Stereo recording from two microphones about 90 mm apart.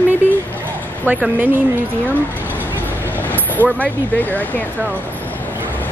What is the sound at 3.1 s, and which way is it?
Vehicle, 20° left (ahead or behind).